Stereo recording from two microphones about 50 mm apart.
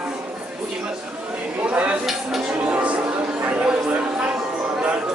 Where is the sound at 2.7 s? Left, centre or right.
Right.